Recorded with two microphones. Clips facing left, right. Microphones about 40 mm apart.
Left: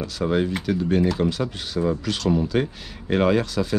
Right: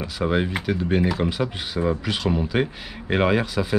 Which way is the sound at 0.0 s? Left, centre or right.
Centre.